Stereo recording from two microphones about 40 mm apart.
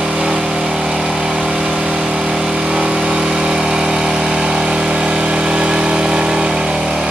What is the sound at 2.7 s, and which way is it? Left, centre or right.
Vehicle, right.